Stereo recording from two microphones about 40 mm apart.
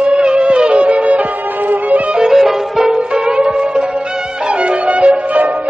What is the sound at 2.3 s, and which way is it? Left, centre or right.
Music, centre.